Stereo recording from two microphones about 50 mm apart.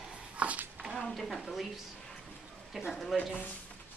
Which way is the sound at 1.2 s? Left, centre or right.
Centre.